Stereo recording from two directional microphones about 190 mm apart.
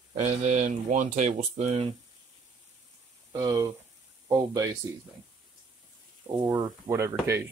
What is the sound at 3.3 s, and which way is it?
Speech, 15° right (ahead or behind).